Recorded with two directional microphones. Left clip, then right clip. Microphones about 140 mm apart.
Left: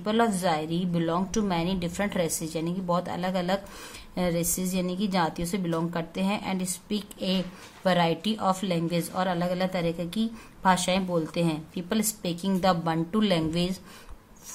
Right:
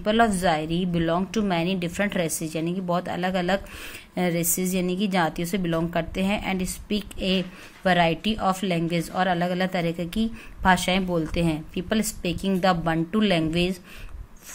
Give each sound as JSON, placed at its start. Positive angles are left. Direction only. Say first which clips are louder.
{"t": 0.0, "sound": "a woman's voice", "louder": "right 4 dB", "side_deg": -20}